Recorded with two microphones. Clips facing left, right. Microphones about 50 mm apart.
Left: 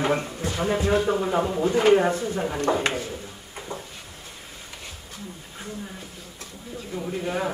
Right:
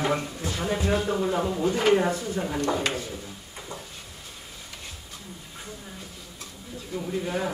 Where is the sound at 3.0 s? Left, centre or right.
Left.